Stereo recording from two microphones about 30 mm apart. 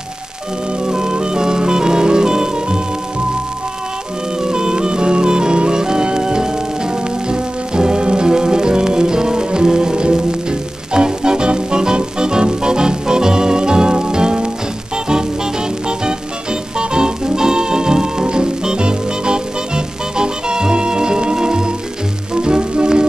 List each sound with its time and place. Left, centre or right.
0.8 s music: right
4.4 s music: right
16.7 s music: right